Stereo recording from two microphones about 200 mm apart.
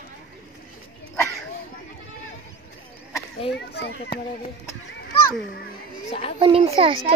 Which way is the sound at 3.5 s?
55° left (ahead or behind).